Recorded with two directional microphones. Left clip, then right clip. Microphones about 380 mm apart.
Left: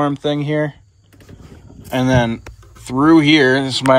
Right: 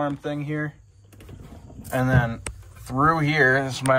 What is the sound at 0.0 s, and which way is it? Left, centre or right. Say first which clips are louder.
Speech: left 9 dB; centre.